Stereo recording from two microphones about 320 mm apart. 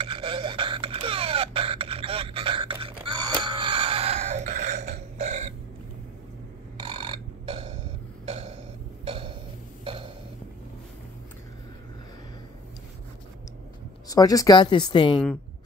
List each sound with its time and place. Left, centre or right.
0.0 s a sound: centre
5.2 s burping: centre
6.8 s burping: centre
14.0 s speech: centre